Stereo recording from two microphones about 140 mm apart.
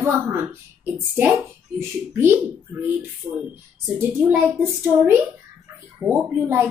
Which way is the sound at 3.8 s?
10° right (ahead or behind).